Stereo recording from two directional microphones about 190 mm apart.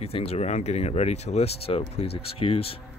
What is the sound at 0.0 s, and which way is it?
Speech, 30° left (ahead or behind).